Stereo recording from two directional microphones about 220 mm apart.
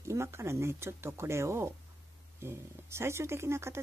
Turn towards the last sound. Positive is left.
turn(degrees=-10)  # may be behind; listen again after turning